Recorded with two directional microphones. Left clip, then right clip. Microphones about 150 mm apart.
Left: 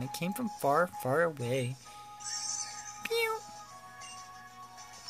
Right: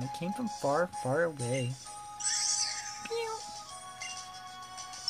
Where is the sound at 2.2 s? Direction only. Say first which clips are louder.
Right 7 dB; 30° right (ahead or behind).